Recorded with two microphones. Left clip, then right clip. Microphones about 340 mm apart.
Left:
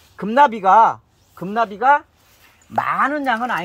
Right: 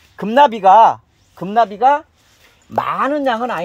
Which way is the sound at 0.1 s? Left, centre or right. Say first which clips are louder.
Right 3 dB; right.